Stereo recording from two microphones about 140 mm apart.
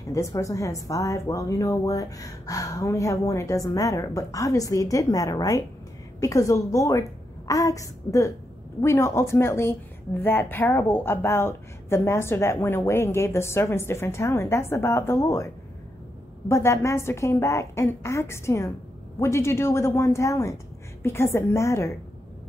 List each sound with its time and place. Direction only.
0.1 s speech: 25° left (ahead or behind)